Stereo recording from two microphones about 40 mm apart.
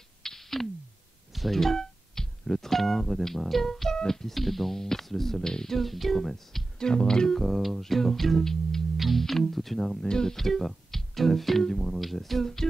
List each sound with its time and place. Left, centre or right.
0.2 s a sound: centre
1.3 s speech: centre
6.8 s speech: centre
7.3 s music: centre
8.9 s music: centre
10.0 s speech: centre
10.3 s music: centre
11.6 s speech: centre